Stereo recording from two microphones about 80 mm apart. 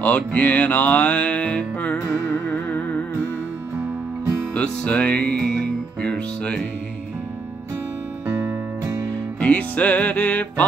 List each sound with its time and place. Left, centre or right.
0.0 s music: centre
4.6 s music: centre
8.3 s music: right
9.1 s music: centre